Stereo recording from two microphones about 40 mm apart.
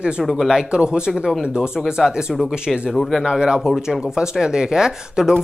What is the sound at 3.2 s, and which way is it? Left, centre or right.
Speech, centre.